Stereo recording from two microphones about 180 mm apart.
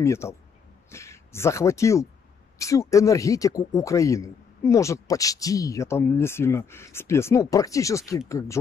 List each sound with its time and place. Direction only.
0.0 s speech: 15° left (ahead or behind)